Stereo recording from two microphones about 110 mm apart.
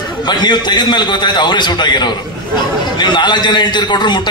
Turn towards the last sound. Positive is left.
turn(degrees=45)  # may be behind; listen again after turning